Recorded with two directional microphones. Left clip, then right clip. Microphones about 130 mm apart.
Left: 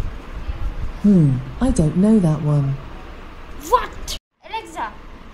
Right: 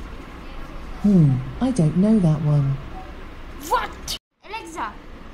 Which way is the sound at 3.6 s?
Centre (ahead or behind).